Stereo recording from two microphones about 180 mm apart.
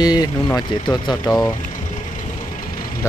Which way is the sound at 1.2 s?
10° left (ahead or behind).